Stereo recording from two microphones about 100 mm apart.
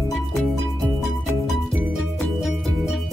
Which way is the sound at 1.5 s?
Centre (ahead or behind).